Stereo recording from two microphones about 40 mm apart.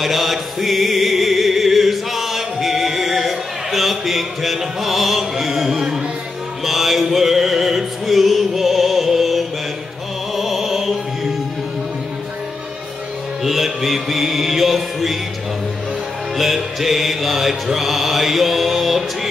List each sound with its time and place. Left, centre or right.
0.0 s music: centre
6.6 s music: centre
13.4 s mantra: centre
16.3 s music: centre